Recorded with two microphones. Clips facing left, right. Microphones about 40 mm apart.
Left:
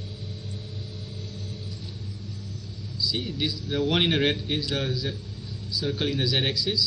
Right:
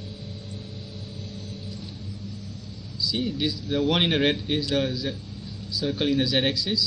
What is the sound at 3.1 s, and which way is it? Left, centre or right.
A man's voice, centre.